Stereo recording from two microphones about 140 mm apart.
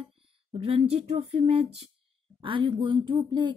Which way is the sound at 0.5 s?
45° right (ahead or behind).